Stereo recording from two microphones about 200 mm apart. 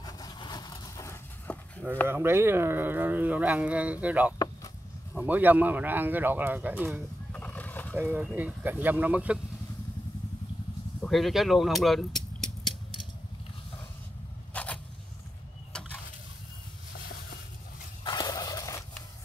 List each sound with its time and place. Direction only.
0.0 s vehicle: 20° left (ahead or behind)
2.0 s speech: 10° right (ahead or behind)
7.3 s a sound: 10° left (ahead or behind)
8.0 s speech: 5° right (ahead or behind)
11.0 s speech: centre (ahead or behind)
14.5 s a sound: 5° left (ahead or behind)
18.0 s turkey: 20° left (ahead or behind)